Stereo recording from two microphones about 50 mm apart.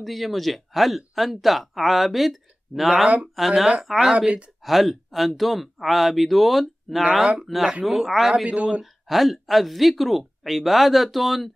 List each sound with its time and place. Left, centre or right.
0.0 s speech: centre
8.5 s speech: right
9.0 s speech: centre